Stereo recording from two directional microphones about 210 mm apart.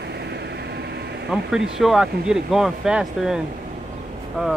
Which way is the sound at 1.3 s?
Centre (ahead or behind).